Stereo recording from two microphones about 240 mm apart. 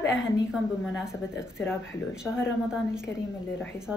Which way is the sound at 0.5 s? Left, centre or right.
Centre.